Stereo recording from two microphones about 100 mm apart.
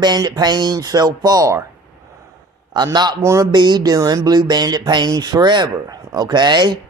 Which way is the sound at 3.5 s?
45° right (ahead or behind).